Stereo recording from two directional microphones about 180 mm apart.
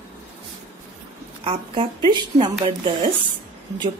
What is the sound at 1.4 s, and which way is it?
A woman's voice, 30° right (ahead or behind).